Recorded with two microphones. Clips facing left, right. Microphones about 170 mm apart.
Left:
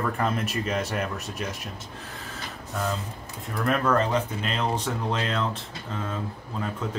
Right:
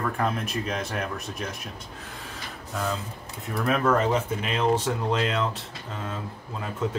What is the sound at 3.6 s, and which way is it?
Speech, 5° right (ahead or behind).